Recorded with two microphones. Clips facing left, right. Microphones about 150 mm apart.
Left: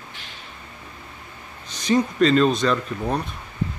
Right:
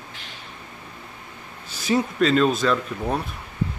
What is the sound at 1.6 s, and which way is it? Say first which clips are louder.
Speech: left 2 dB; 5° right (ahead or behind).